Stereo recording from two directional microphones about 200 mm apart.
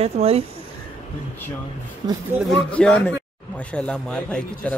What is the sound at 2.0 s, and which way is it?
Speech, 20° right (ahead or behind).